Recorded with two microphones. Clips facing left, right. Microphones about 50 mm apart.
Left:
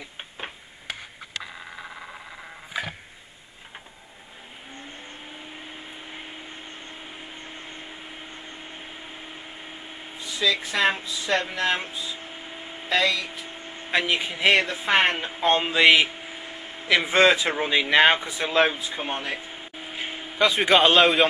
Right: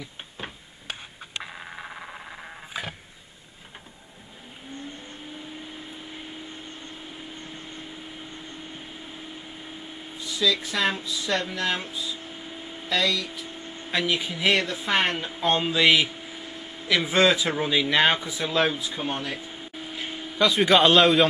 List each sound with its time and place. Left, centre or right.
7.2 s vehicle: left
9.3 s speech: centre